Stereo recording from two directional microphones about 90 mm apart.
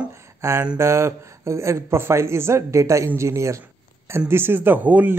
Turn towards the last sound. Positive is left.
turn(degrees=-20)  # may be behind; listen again after turning